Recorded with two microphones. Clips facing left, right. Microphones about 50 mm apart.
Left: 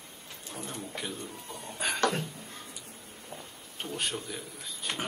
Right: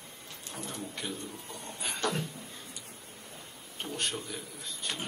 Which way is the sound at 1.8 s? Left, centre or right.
Left.